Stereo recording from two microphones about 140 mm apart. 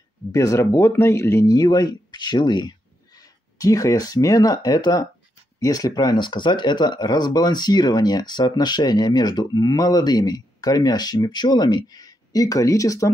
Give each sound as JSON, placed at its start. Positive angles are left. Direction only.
{"t": 0.3, "sound": "speech", "side_deg": 25}